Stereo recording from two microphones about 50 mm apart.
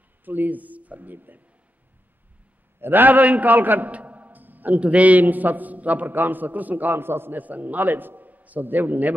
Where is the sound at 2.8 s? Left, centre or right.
Right.